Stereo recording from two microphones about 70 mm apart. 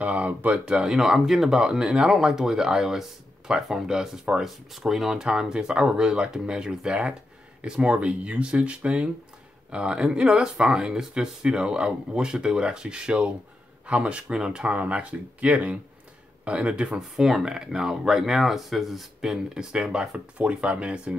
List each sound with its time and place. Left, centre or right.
0.0 s speech: centre